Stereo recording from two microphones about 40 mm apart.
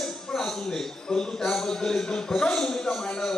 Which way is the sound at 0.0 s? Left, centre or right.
Centre.